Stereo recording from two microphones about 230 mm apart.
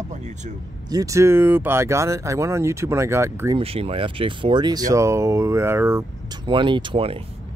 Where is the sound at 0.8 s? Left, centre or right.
Centre.